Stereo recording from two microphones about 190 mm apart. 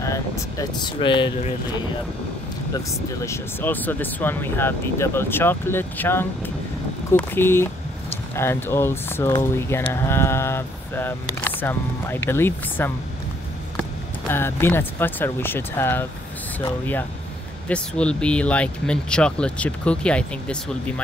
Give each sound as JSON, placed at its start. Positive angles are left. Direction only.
{"t": 0.0, "sound": "speech", "side_deg": 15}
{"t": 2.7, "sound": "speech", "side_deg": 15}
{"t": 14.3, "sound": "speech", "side_deg": 10}